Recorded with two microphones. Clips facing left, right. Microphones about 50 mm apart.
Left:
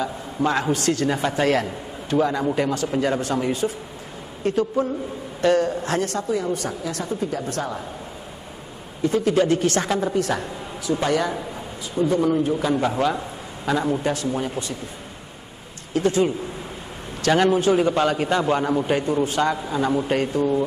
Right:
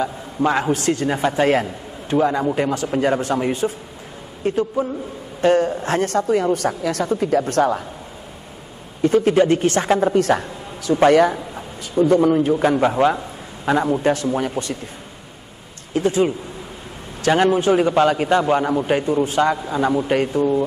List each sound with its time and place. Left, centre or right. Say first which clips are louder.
0.4 s a man's voice: right 3 dB; centre
4.5 s a man's voice: right 1 dB; centre
5.4 s a woman's voice: right 3 dB; right
9.0 s speech: right 4 dB; right
10.1 s a woman's voice: right 6 dB; right
12.9 s a man's voice: right 5 dB; right
14.0 s speech: right 5 dB; right
15.9 s a man's voice: right 2 dB; right
17.3 s a man's voice: right 2 dB; centre
17.6 s a man's voice: right 2 dB; right
17.9 s a man's voice: right 4 dB; centre
19.2 s a man's voice: right 3 dB; right